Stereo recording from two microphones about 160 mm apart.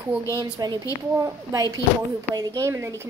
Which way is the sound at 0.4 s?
25° right (ahead or behind).